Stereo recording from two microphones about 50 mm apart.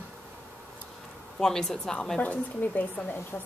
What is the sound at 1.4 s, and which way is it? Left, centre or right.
Speech, centre.